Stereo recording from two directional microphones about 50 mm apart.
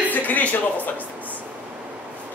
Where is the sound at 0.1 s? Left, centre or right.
Left.